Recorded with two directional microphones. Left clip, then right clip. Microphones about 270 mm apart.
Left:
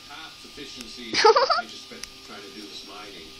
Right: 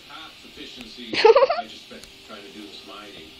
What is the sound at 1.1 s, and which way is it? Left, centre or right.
Speech, centre.